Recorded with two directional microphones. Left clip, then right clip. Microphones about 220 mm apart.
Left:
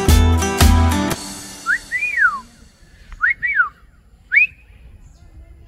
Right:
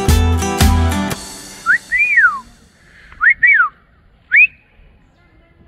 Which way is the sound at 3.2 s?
20° right (ahead or behind).